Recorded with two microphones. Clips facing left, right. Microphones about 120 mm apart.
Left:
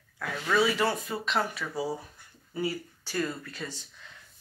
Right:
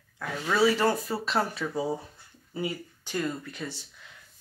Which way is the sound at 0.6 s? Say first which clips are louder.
Right 4 dB; 30° right (ahead or behind).